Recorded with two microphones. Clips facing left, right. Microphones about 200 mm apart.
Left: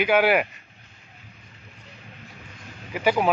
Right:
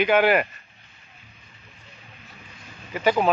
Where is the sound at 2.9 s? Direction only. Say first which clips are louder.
Right 1 dB; 10° left (ahead or behind).